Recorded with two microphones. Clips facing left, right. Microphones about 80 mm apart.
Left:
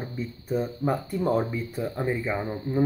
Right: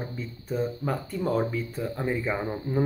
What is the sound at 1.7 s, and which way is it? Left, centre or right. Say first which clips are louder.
Speech: left 1 dB; centre.